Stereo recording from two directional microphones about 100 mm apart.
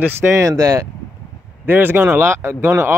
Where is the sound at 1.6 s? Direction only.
20° right (ahead or behind).